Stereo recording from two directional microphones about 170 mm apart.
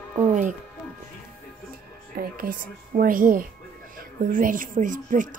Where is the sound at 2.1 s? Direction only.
60° right (ahead or behind).